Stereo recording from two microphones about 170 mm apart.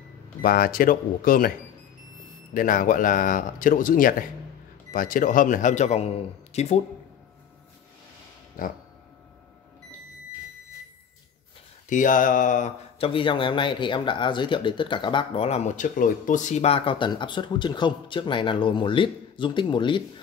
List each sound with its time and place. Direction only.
0.4 s speech: 60° left (ahead or behind)
2.5 s a man's voice: 55° left (ahead or behind)
8.6 s a man's voice: 55° left (ahead or behind)
11.9 s a man's voice: 50° left (ahead or behind)
13.0 s speech: 30° left (ahead or behind)